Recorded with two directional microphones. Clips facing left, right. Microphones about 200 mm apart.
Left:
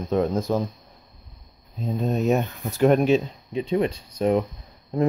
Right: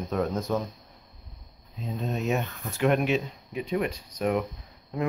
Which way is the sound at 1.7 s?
40° left (ahead or behind).